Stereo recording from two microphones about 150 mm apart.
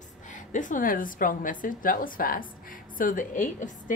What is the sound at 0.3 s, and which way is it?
A woman's voice, 60° left (ahead or behind).